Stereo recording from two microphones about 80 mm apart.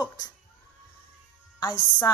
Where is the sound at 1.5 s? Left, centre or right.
Left.